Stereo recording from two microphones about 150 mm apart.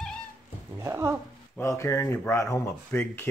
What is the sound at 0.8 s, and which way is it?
Speech, 15° right (ahead or behind).